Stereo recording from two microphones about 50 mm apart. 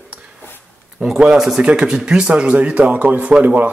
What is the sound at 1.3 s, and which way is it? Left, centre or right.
A man's voice, centre.